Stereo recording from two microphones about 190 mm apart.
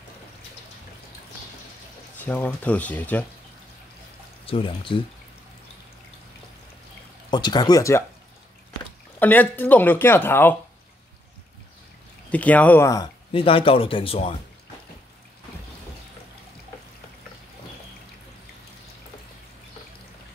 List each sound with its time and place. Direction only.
2.2 s speech: 10° left (ahead or behind)
4.5 s speech: 30° left (ahead or behind)
7.2 s speech: 25° left (ahead or behind)
9.2 s speech: 10° left (ahead or behind)
12.3 s speech: 5° left (ahead or behind); by 14.3 s 30° left (ahead or behind)